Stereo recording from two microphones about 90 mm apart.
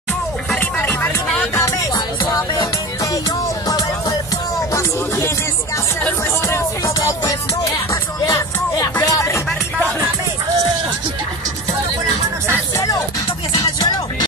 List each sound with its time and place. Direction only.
0.6 s music: 20° left (ahead or behind)
1.5 s music: 35° left (ahead or behind)
4.7 s music: 30° left (ahead or behind)
6.4 s music: 35° left (ahead or behind)
12.7 s music: 40° left (ahead or behind)